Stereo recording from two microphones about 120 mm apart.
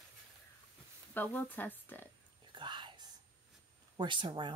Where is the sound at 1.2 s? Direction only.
15° left (ahead or behind).